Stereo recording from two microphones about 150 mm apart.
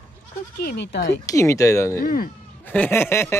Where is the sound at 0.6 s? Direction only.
90° left.